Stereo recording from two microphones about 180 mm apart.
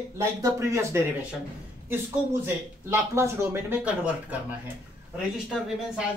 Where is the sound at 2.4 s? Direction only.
15° right (ahead or behind).